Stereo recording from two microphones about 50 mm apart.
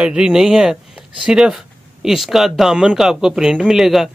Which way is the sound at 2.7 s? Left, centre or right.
Centre.